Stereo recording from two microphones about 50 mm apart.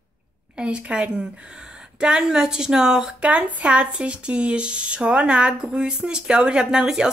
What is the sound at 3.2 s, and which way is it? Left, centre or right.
Speech, right.